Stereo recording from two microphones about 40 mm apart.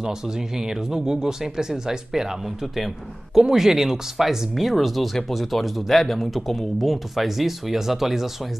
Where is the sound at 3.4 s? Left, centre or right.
Centre.